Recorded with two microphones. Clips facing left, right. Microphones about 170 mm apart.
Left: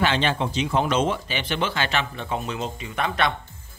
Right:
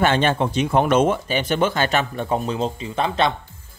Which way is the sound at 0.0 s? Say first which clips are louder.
Right 4 dB; 50° right (ahead or behind).